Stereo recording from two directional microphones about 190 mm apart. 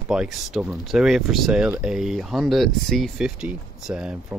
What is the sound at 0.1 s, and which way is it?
Speech, centre (ahead or behind).